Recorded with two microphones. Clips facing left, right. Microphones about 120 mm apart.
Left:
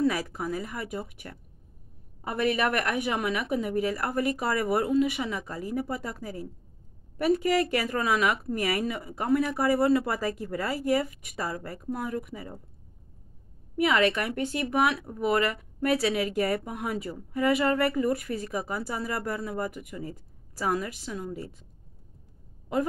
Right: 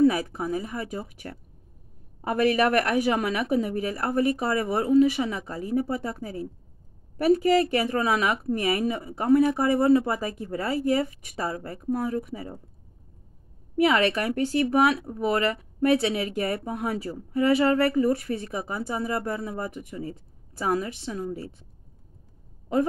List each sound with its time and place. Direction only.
0.0 s speech: 25° right (ahead or behind)
2.2 s speech: 40° right (ahead or behind)
13.7 s speech: 35° right (ahead or behind)